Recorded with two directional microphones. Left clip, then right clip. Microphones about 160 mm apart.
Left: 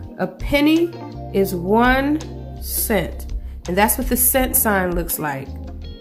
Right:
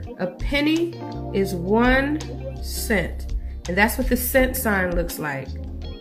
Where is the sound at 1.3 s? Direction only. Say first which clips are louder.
Left 4 dB; 15° left (ahead or behind).